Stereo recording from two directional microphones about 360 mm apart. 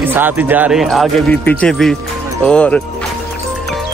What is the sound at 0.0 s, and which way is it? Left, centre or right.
Speech, centre.